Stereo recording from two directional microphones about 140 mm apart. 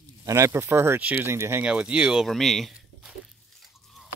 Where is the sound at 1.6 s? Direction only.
10° right (ahead or behind).